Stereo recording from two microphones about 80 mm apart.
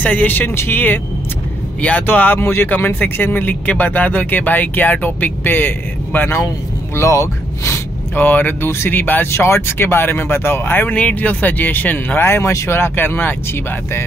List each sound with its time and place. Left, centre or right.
0.0 s speech: left
7.0 s speech: left
8.2 s speech: left